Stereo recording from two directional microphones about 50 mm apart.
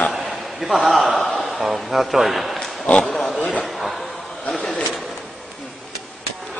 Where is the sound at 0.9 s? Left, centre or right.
Centre.